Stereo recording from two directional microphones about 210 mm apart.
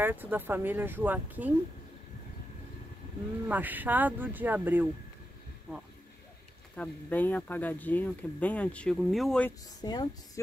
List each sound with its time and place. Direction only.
0.0 s speech: 10° right (ahead or behind)
3.4 s speech: 10° right (ahead or behind)
6.7 s speech: 5° left (ahead or behind)
9.8 s a woman's voice: 20° left (ahead or behind)